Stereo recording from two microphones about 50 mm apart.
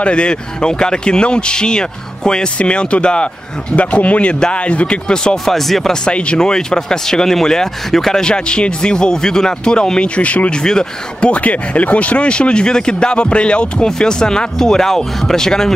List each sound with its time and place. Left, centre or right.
0.0 s speech: left; by 5.9 s centre
6.0 s speech: left
10.5 s speech: centre